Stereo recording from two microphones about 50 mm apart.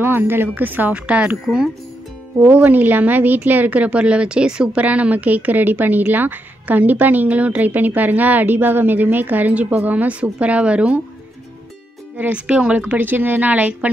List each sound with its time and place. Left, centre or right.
0.0 s speech: right
0.9 s speech: right
2.4 s a woman's voice: right; by 4.8 s centre
4.8 s a woman's voice: right
12.2 s a woman's voice: right